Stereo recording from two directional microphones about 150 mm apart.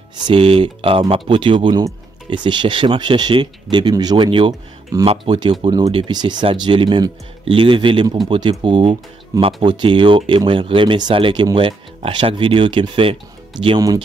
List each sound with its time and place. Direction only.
0.2 s speech: 35° right (ahead or behind)